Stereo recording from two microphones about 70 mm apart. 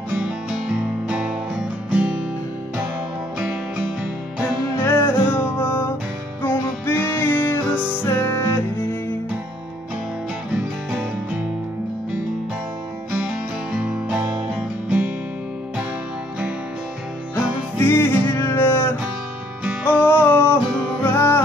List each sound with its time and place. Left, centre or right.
0.1 s music: centre
3.3 s music: centre
4.8 s music: left
7.7 s music: centre
8.0 s music: left
13.2 s music: centre
17.7 s music: left
19.6 s music: right
20.1 s music: left